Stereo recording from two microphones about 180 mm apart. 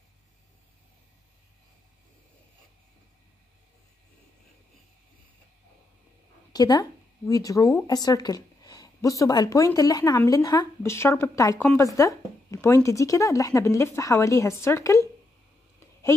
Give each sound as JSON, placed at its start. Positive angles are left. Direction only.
{"t": 6.5, "sound": "speech", "side_deg": 20}